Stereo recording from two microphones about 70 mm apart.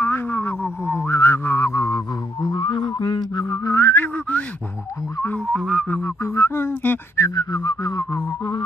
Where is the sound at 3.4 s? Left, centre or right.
Left.